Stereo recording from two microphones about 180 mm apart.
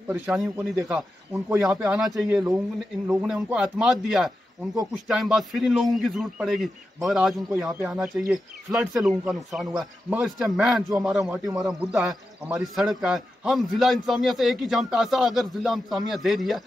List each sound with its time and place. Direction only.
0.1 s a man's voice: centre (ahead or behind)
2.3 s a man's voice: 10° right (ahead or behind)
11.3 s a man's voice: 20° right (ahead or behind)
11.6 s a man's voice: centre (ahead or behind)